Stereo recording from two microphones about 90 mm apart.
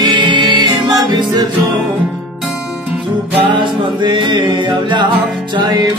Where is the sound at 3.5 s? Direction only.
65° right (ahead or behind).